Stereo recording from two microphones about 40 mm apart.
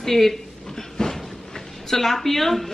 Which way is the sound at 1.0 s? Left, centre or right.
Centre.